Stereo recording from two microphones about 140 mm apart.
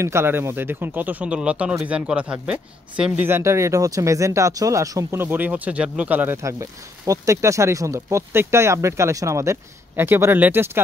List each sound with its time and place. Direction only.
0.0 s speech: 20° right (ahead or behind)